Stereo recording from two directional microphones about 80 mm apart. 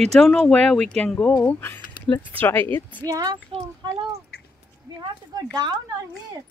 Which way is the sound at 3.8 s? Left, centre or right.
Right.